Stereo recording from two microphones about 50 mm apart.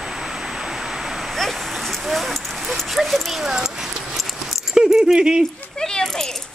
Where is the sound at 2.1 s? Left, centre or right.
Centre.